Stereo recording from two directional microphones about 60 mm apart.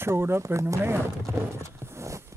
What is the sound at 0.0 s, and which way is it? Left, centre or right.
Speech, right.